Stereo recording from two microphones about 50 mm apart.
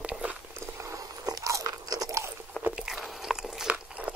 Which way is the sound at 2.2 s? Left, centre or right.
Right.